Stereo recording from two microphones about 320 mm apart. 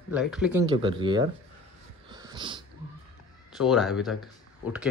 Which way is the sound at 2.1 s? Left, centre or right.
Centre.